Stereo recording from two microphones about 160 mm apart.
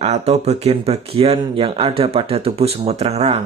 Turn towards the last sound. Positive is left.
turn(degrees=-40)  # may be behind; listen again after turning